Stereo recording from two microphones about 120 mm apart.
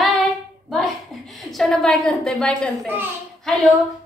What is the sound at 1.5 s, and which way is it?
A woman's voice, 5° left (ahead or behind).